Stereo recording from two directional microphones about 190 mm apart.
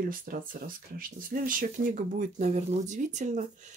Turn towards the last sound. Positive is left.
turn(degrees=-40)  # may be behind; listen again after turning